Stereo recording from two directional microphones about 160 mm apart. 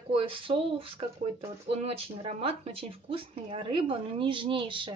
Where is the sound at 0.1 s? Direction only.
35° right (ahead or behind).